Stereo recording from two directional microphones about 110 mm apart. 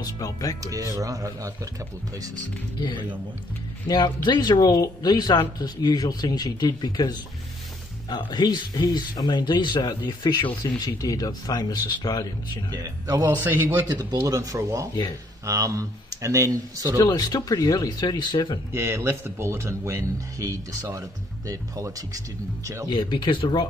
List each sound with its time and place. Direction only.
0.0 s speech: 30° left (ahead or behind)
0.7 s speech: 30° right (ahead or behind)
3.8 s speech: 40° left (ahead or behind)
12.7 s speech: 35° right (ahead or behind)
13.5 s speech: 20° right (ahead or behind)
14.1 s speech: 30° right (ahead or behind)
17.0 s speech: 35° left (ahead or behind)
18.7 s speech: 25° right (ahead or behind)
22.8 s speech: 45° left (ahead or behind)